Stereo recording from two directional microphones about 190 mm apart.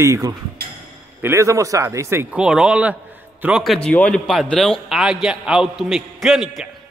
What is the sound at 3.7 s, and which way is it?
A man's voice, 5° left (ahead or behind).